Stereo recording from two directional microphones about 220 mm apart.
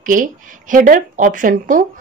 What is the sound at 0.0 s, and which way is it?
Speech, 35° right (ahead or behind).